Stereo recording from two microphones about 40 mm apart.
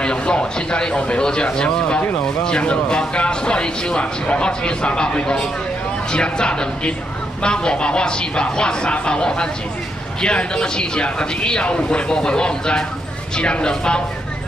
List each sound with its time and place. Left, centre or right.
0.0 s a man's voice: left